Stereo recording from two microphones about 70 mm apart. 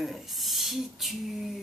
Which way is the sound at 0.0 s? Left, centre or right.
Centre.